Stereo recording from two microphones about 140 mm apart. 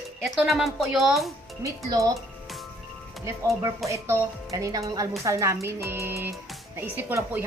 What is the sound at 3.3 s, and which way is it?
Speech, 20° right (ahead or behind).